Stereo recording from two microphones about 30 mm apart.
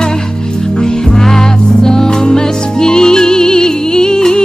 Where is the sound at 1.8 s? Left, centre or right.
Left.